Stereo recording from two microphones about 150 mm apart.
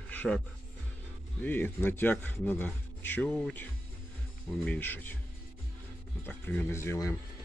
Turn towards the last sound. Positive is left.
turn(degrees=20)  # may be behind; listen again after turning